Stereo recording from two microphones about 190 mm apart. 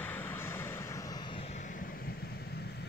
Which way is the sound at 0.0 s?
10° left (ahead or behind).